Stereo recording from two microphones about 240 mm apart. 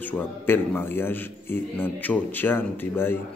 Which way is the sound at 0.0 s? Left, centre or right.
Centre.